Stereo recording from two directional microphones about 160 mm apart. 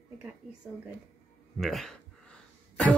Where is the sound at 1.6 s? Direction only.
Centre (ahead or behind).